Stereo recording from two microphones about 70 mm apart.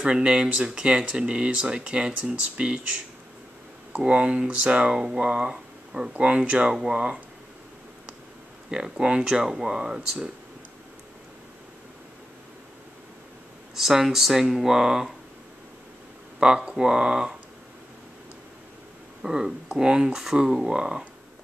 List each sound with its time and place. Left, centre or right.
0.0 s speech: centre
3.9 s speech: centre
8.6 s speech: centre
13.7 s speech: centre
16.3 s speech: centre
19.2 s speech: centre